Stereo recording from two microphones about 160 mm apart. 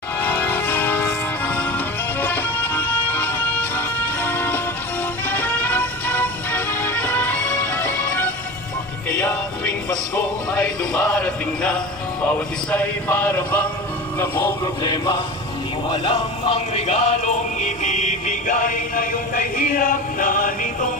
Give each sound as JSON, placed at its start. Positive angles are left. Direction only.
{"t": 0.2, "sound": "music", "side_deg": 10}
{"t": 10.5, "sound": "a man's voice", "side_deg": 5}
{"t": 14.3, "sound": "music", "side_deg": 20}
{"t": 15.9, "sound": "music", "side_deg": 35}